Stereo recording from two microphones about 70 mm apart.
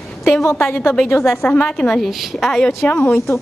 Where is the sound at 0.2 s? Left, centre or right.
Left.